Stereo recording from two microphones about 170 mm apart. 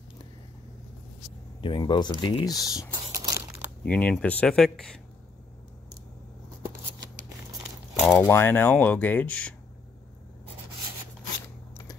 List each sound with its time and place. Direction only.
1.6 s speech: 30° left (ahead or behind)
2.9 s a sound: 20° right (ahead or behind)
3.8 s speech: 5° left (ahead or behind)
8.1 s speech: 10° left (ahead or behind)